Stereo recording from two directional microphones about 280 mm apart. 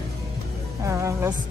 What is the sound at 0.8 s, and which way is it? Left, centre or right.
Speech, centre.